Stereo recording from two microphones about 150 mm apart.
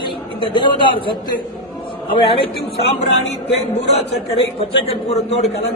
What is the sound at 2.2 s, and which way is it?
Speech, 40° left (ahead or behind).